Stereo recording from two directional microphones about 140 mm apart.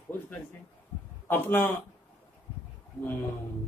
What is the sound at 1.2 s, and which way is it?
Speech, 15° left (ahead or behind).